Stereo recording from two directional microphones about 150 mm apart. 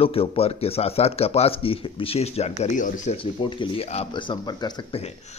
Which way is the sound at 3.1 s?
35° left (ahead or behind).